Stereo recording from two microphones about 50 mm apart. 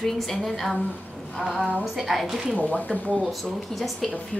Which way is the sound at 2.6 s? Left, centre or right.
Left.